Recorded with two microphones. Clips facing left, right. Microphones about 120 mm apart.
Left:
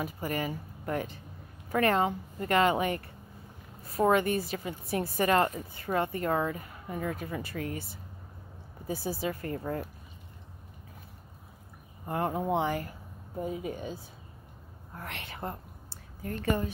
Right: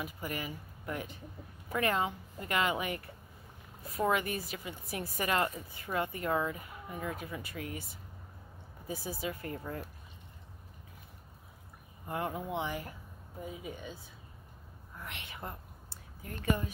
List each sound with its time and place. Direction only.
0.0 s speech: 40° left (ahead or behind)
12.1 s speech: 40° left (ahead or behind)
15.0 s a woman's voice: 40° left (ahead or behind)